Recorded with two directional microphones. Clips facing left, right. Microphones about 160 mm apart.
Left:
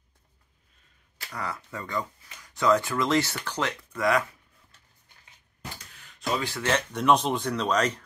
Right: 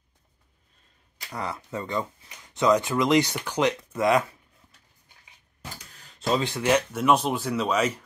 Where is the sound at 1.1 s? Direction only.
20° right (ahead or behind).